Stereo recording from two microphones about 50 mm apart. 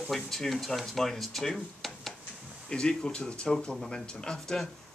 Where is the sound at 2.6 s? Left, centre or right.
Centre.